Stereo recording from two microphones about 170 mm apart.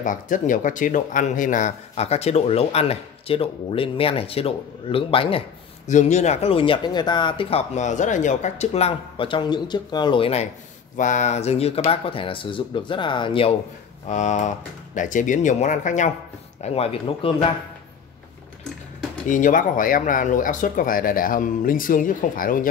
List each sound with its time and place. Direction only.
0.0 s speech: 50° left (ahead or behind); by 5.4 s 30° left (ahead or behind)
5.9 s speech: 45° left (ahead or behind)
11.0 s speech: 45° left (ahead or behind); by 13.5 s 30° left (ahead or behind)
14.0 s speech: 45° left (ahead or behind)
16.6 s speech: 35° left (ahead or behind)
19.2 s speech: 50° left (ahead or behind)